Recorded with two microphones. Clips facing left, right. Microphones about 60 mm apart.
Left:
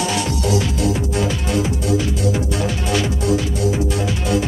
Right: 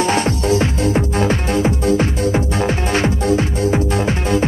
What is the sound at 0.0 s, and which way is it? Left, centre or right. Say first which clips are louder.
Music: right 4 dB; right.